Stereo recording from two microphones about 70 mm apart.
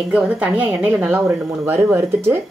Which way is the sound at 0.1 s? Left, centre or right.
Centre.